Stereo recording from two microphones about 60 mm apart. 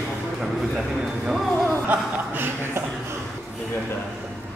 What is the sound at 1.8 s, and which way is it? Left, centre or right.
Speech, right.